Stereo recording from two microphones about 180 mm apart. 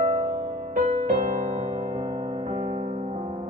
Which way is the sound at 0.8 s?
35° right (ahead or behind).